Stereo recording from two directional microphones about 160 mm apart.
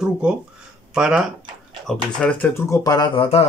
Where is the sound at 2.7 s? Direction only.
25° left (ahead or behind).